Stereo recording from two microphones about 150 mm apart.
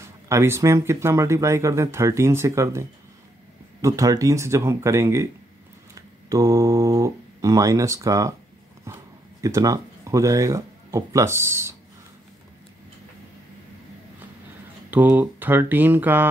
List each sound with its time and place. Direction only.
0.3 s speech: 20° right (ahead or behind)
14.9 s speech: 10° right (ahead or behind)